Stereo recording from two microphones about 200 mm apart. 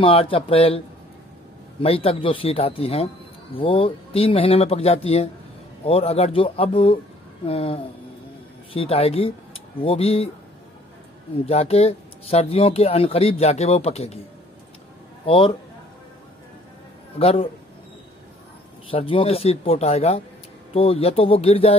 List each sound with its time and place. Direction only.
0.0 s speech: 25° left (ahead or behind)
11.4 s speech: 30° left (ahead or behind)
15.2 s speech: 25° left (ahead or behind)
17.2 s speech: 30° left (ahead or behind)
18.9 s speech: 25° left (ahead or behind)